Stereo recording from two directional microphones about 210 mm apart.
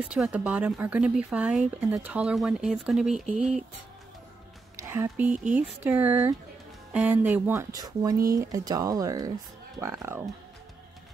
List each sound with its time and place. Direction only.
0.1 s speech: 5° right (ahead or behind)
4.8 s speech: 10° right (ahead or behind)